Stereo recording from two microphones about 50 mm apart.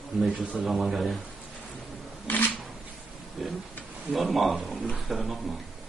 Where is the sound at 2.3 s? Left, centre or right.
Left.